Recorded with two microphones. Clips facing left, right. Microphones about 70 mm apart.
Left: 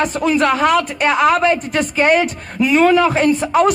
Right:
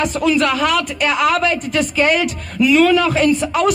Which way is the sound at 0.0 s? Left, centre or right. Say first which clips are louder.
Left 1 dB; left.